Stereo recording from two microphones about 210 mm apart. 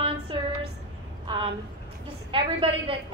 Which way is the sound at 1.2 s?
20° right (ahead or behind).